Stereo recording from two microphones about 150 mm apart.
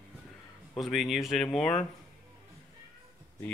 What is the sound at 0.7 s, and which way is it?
Speech, centre (ahead or behind).